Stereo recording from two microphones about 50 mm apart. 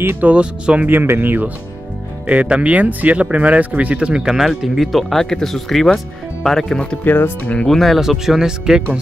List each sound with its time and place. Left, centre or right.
0.2 s speech: right
0.8 s speech: right
2.2 s speech: right; by 6.8 s centre
7.1 s speech: left
7.6 s speech: centre
8.0 s speech: centre